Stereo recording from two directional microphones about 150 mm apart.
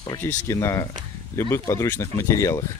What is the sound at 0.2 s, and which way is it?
Speech, 20° left (ahead or behind).